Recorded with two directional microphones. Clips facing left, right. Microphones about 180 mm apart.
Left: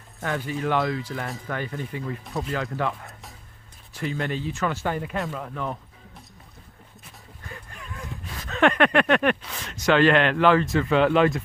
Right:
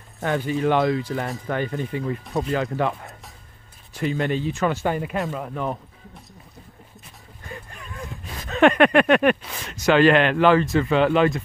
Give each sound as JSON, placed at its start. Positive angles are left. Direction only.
{"t": 0.3, "sound": "speech", "side_deg": -25}
{"t": 7.4, "sound": "a sound", "side_deg": -20}
{"t": 8.3, "sound": "speech", "side_deg": -20}